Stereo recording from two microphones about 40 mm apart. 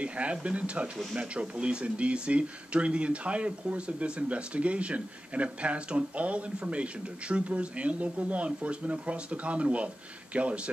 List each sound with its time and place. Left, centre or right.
0.0 s speech: right